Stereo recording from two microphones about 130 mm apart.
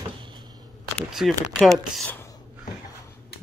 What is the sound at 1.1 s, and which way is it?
Speech, 5° right (ahead or behind).